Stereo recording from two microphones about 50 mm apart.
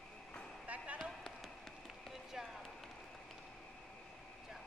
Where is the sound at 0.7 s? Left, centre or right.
Right.